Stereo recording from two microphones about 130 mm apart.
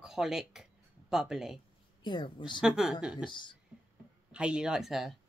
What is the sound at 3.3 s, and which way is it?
Speech, 40° left (ahead or behind).